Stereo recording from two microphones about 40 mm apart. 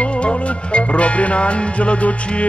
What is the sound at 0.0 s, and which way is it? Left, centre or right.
Music, left.